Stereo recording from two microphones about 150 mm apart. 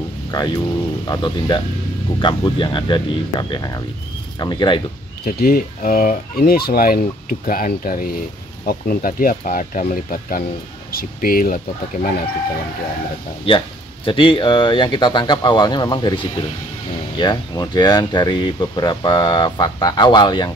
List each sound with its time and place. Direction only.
0.3 s speech: 30° left (ahead or behind)
5.2 s speech: 80° left
10.9 s speech: 85° left
14.0 s speech: 35° left (ahead or behind)